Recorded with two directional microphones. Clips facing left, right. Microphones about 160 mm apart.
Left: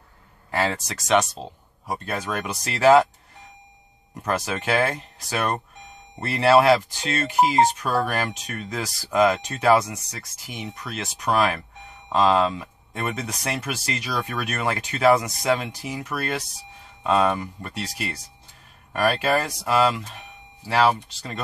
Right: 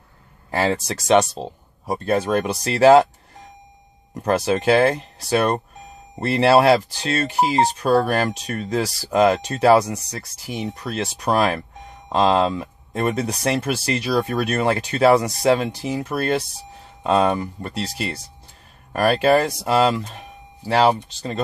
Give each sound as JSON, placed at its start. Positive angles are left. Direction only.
{"t": 0.5, "sound": "speech", "side_deg": -30}
{"t": 4.1, "sound": "speech", "side_deg": -35}